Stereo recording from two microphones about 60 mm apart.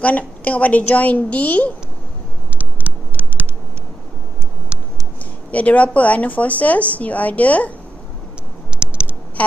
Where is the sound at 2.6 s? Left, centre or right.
Right.